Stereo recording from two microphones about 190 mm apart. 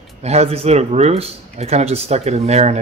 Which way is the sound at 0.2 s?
35° right (ahead or behind).